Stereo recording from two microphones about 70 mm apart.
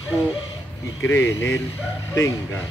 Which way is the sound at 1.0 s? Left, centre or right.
Left.